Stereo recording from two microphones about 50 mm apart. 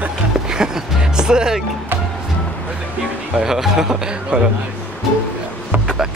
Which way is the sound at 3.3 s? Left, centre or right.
Centre.